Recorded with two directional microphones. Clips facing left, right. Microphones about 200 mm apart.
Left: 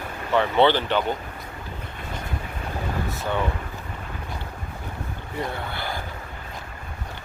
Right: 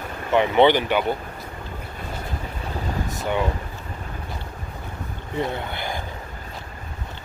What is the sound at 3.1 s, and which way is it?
Boat, 15° right (ahead or behind).